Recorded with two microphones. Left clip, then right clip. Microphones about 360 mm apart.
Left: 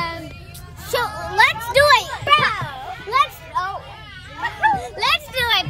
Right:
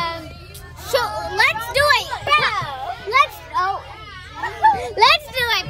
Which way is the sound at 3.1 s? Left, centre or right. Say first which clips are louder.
Right 2 dB; centre.